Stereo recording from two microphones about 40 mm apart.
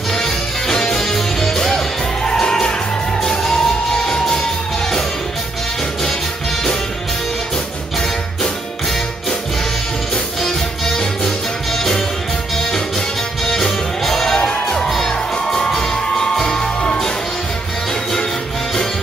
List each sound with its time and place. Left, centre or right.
0.1 s music: centre
10.4 s music: centre